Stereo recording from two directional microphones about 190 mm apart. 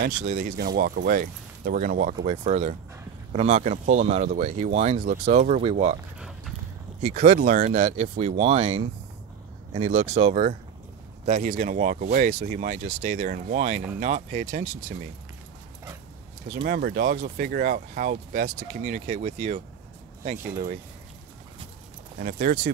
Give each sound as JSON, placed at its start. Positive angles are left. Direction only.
{"t": 0.0, "sound": "speech", "side_deg": -40}
{"t": 2.2, "sound": "speech", "side_deg": -35}
{"t": 6.1, "sound": "clip-clop", "side_deg": -5}
{"t": 7.1, "sound": "speech", "side_deg": -40}
{"t": 16.5, "sound": "speech", "side_deg": -55}
{"t": 22.2, "sound": "speech", "side_deg": -45}